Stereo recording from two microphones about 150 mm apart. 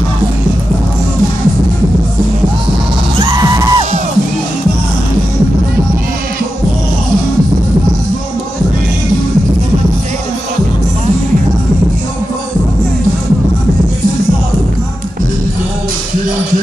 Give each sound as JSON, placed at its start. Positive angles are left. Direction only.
{"t": 3.2, "sound": "music", "side_deg": -35}